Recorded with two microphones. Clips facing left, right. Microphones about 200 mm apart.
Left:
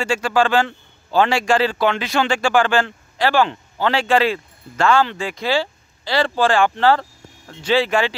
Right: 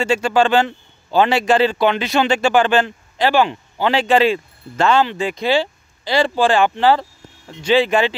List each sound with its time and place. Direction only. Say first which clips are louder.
0.0 s a man's voice: right 2 dB; 25° right (ahead or behind)